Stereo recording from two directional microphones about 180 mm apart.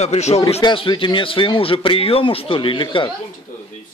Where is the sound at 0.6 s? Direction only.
25° left (ahead or behind).